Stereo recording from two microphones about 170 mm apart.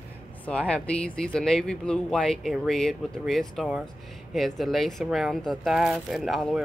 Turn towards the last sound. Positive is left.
turn(degrees=0)  # may be behind; listen again after turning